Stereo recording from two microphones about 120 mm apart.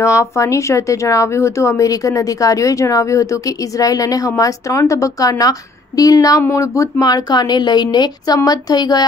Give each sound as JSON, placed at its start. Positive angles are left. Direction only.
{"t": 0.0, "sound": "speech", "side_deg": 25}